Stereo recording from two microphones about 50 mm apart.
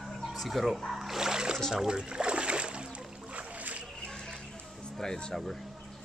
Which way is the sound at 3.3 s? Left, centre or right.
Right.